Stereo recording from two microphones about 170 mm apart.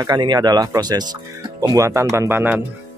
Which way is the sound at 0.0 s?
25° right (ahead or behind).